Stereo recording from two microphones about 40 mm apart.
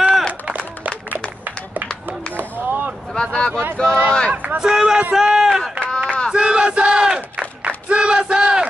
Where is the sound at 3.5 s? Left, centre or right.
Right.